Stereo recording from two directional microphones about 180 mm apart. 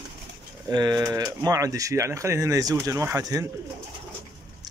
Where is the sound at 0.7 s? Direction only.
20° right (ahead or behind).